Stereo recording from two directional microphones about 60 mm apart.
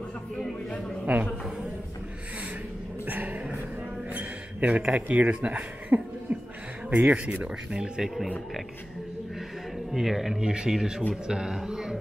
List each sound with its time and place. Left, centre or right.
1.1 s speech: right
3.1 s dog: right
4.1 s a sound: right
5.0 s speech: right
9.9 s speech: centre
10.4 s speech: centre